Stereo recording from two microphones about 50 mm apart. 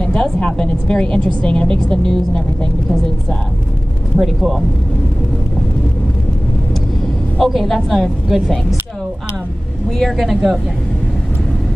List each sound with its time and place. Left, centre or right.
0.0 s a sound: centre
0.4 s a woman's voice: centre
4.2 s a woman's voice: centre
7.3 s a woman's voice: centre
8.3 s a woman's voice: centre
9.8 s a woman's voice: centre